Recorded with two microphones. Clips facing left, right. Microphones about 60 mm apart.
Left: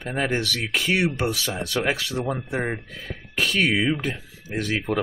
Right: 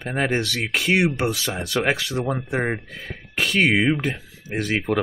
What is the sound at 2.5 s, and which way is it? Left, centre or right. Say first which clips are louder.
Speech: right 3 dB; centre.